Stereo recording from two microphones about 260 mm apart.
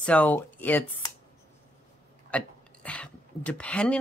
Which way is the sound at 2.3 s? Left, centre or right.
Centre.